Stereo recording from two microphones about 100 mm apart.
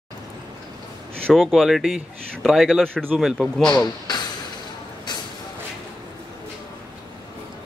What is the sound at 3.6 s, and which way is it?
Speech, 40° left (ahead or behind).